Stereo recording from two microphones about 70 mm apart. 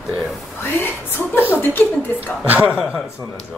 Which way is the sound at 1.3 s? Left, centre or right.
Left.